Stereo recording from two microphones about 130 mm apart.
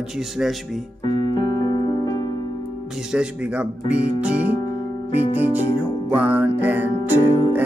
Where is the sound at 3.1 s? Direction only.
10° right (ahead or behind).